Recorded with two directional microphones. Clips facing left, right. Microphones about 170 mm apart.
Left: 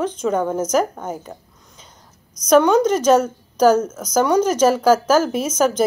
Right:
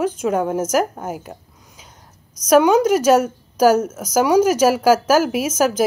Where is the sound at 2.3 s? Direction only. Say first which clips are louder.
Even; 5° right (ahead or behind).